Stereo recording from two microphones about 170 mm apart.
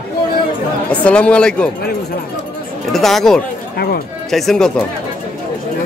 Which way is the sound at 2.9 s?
Centre (ahead or behind).